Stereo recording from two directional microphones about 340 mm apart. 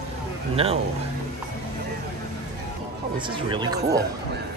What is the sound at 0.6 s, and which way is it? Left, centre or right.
Speech, centre.